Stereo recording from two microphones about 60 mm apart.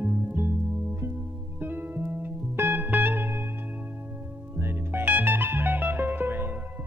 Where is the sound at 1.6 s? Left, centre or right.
Right.